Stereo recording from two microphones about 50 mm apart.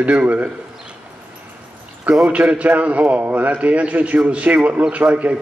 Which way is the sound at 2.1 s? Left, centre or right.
Right.